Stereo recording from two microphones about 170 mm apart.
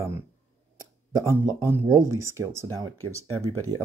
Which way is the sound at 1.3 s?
15° right (ahead or behind).